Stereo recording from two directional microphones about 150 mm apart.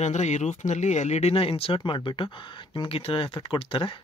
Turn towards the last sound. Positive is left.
turn(degrees=35)  # may be behind; listen again after turning